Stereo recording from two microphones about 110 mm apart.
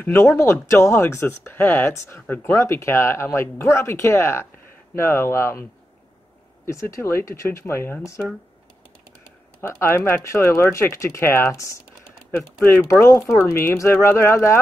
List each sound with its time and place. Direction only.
0.0 s speech: 25° left (ahead or behind)
9.6 s speech: 20° left (ahead or behind)